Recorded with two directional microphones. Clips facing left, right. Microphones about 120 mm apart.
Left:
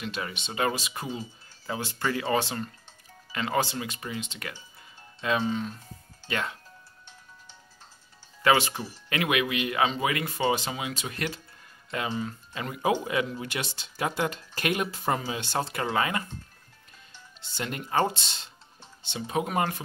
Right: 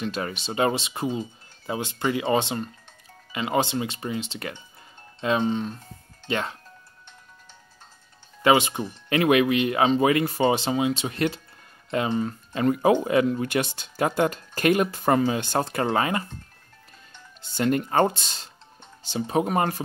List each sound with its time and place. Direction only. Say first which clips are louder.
0.0 s speech: right 5 dB; 40° right (ahead or behind)
8.4 s speech: right 4 dB; 20° right (ahead or behind)
12.1 s speech: right 6 dB; 40° right (ahead or behind)
17.4 s speech: right 11 dB; 45° right (ahead or behind)